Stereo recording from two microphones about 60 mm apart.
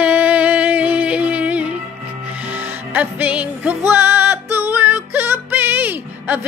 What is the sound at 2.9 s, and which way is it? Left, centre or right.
Music, right.